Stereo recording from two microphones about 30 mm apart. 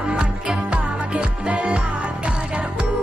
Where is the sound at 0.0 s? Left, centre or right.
Right.